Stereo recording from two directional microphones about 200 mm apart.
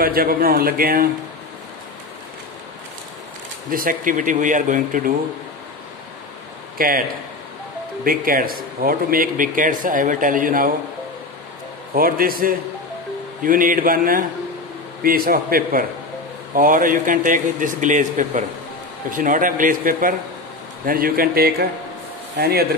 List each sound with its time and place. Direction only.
0.0 s speech: 45° right (ahead or behind)
3.7 s a man's voice: 45° right (ahead or behind)
8.0 s speech: 45° right (ahead or behind)
11.9 s a man's voice: 45° right (ahead or behind)